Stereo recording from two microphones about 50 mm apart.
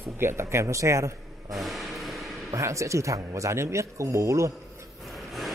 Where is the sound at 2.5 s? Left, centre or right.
Right.